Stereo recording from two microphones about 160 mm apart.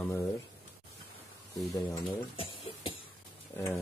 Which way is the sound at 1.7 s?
15° left (ahead or behind).